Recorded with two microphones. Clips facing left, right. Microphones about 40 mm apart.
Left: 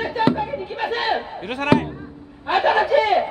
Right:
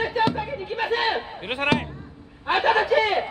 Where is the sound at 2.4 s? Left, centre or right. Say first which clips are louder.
Left 2 dB; centre.